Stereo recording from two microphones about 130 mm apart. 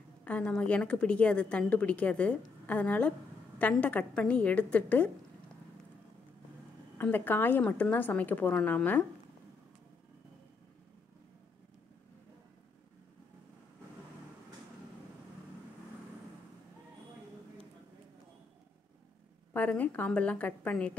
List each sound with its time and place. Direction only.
0.2 s a woman's voice: 10° left (ahead or behind)
7.0 s a woman's voice: 15° left (ahead or behind)
19.5 s a woman's voice: 10° left (ahead or behind)